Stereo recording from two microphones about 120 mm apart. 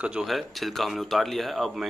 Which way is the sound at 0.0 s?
5° right (ahead or behind).